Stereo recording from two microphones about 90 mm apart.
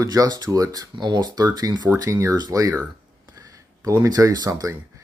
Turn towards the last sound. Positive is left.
turn(degrees=-45)  # may be behind; listen again after turning